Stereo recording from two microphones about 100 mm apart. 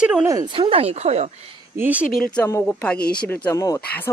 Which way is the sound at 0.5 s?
70° right (ahead or behind).